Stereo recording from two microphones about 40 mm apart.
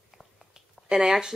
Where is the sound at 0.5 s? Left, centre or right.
Centre.